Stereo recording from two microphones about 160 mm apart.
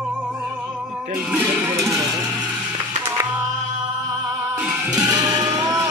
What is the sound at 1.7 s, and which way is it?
Music, 20° right (ahead or behind).